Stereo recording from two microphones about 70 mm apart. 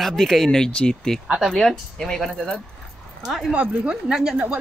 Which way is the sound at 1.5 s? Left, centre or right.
Centre.